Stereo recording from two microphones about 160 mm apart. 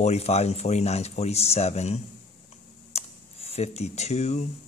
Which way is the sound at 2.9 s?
40° left (ahead or behind).